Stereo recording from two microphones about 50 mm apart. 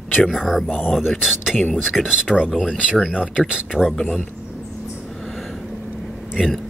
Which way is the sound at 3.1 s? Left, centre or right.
Centre.